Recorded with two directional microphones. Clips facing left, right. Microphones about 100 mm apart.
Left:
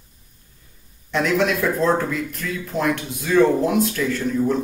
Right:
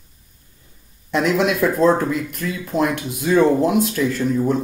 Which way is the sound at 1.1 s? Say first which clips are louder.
Right 2 dB; 15° right (ahead or behind).